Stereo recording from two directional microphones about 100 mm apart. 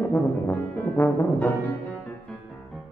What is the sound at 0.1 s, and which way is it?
Brass instrument, 20° left (ahead or behind).